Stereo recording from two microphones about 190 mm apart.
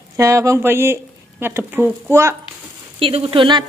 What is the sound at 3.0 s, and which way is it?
Speech, 30° right (ahead or behind).